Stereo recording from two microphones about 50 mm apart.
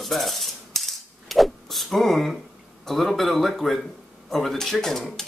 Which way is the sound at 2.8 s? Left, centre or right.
Centre.